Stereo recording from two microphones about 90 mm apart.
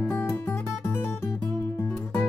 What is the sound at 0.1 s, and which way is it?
Guitar, 20° left (ahead or behind).